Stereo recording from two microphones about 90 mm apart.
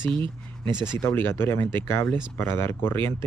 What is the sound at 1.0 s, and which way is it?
Speech, 25° left (ahead or behind).